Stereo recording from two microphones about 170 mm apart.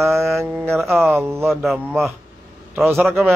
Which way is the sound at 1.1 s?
15° right (ahead or behind).